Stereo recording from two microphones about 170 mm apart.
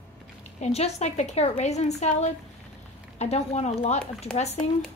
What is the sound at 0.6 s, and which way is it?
A woman's voice, 40° left (ahead or behind).